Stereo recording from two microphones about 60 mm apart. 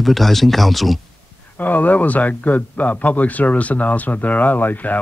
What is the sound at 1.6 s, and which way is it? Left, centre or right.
Speech, left.